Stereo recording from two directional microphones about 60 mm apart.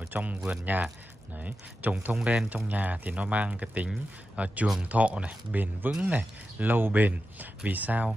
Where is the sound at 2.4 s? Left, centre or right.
Right.